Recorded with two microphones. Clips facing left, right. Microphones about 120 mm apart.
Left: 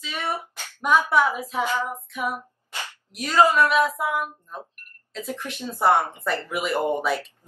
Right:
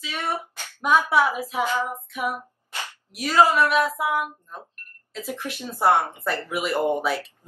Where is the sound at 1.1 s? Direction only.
10° right (ahead or behind).